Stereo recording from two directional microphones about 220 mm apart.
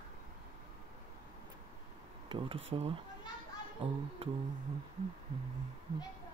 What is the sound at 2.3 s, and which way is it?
Speech, 25° right (ahead or behind).